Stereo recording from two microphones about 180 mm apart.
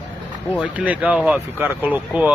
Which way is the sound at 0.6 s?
10° right (ahead or behind).